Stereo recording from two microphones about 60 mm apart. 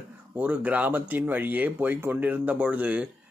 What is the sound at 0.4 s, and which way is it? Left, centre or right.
Speech, right.